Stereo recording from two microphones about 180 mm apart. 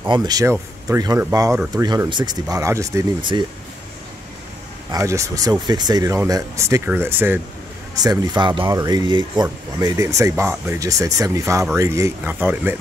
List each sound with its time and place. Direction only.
0.1 s speech: 20° right (ahead or behind)
4.9 s speech: 15° right (ahead or behind)